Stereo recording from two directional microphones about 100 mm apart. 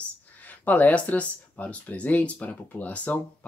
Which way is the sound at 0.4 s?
15° left (ahead or behind).